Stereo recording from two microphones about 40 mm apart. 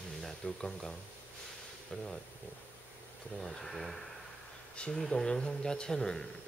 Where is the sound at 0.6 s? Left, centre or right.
Centre.